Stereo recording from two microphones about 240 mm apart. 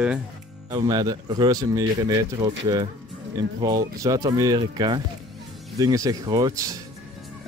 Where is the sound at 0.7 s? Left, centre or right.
Centre.